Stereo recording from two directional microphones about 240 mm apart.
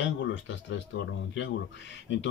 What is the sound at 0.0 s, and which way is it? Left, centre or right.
Speech, left.